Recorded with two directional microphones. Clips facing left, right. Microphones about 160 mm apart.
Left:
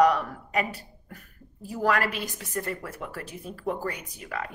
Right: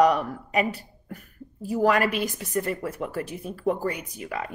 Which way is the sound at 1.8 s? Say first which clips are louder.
Right 4 dB; 20° right (ahead or behind).